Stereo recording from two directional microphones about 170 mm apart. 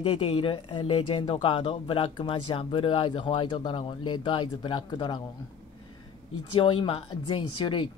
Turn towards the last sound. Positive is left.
turn(degrees=30)  # may be behind; listen again after turning